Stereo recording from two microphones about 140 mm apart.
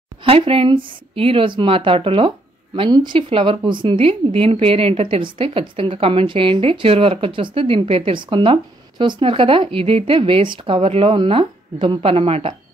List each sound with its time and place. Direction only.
0.2 s speech: 40° right (ahead or behind)